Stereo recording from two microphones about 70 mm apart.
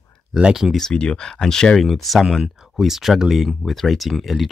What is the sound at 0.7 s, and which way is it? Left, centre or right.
Speech, centre.